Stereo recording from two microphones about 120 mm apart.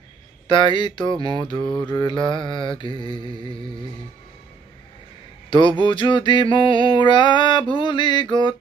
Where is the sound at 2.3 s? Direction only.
40° left (ahead or behind).